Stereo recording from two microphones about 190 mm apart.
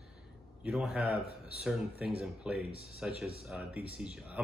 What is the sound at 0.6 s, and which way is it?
A man's voice, 5° right (ahead or behind).